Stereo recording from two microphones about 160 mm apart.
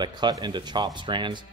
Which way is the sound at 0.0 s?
25° right (ahead or behind).